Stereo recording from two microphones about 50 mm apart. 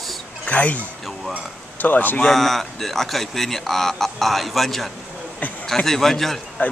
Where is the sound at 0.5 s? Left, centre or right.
Left.